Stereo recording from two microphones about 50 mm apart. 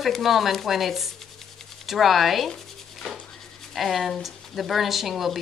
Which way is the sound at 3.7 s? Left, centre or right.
Centre.